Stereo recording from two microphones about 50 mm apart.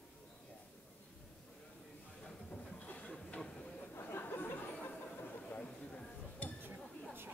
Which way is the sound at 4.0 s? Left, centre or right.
Left.